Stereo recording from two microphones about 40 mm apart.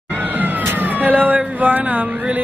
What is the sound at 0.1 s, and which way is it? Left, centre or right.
Vehicle, right.